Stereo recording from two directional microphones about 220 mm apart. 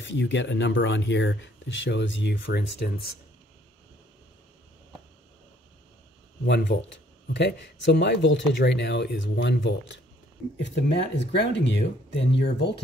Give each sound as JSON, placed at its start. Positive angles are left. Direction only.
{"t": 0.0, "sound": "speech", "side_deg": 55}
{"t": 6.4, "sound": "speech", "side_deg": 50}